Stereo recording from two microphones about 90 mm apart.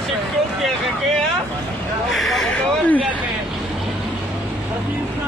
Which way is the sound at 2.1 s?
Centre (ahead or behind).